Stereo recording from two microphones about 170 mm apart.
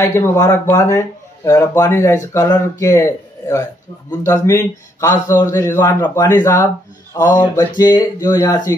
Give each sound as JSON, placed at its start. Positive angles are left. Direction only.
{"t": 0.0, "sound": "speech", "side_deg": 15}